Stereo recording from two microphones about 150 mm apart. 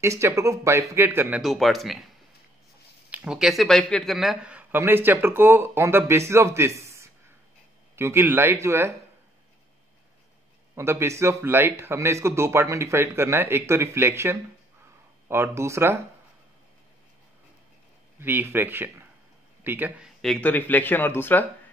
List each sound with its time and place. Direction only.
0.0 s a man's voice: 20° right (ahead or behind)
1.4 s speech: centre (ahead or behind)
3.1 s a man's voice: 5° right (ahead or behind)
10.7 s a man's voice: 15° right (ahead or behind)
18.2 s a man's voice: 15° right (ahead or behind)
20.2 s speech: 5° left (ahead or behind)